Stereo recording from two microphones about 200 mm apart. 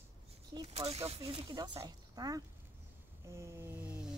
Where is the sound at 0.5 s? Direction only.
30° right (ahead or behind); by 3.9 s 15° right (ahead or behind).